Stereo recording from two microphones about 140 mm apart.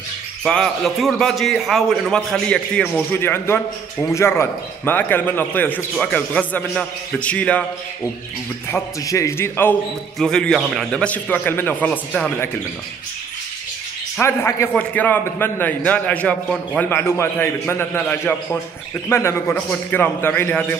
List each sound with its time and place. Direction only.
0.4 s a man's voice: 5° left (ahead or behind)
8.6 s a man's voice: 20° left (ahead or behind)
10.1 s a man's voice: 5° left (ahead or behind)
14.2 s a man's voice: 20° left (ahead or behind)
17.1 s a man's voice: 20° left (ahead or behind)